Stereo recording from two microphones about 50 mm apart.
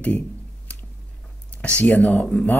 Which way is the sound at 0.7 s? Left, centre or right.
Left.